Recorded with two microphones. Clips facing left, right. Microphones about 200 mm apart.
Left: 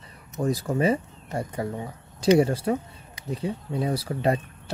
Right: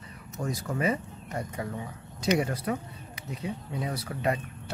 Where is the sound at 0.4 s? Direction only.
35° left (ahead or behind).